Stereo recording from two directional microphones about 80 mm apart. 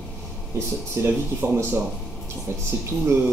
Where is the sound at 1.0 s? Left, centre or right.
Right.